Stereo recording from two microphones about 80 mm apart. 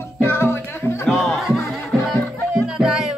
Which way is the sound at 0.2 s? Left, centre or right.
Left.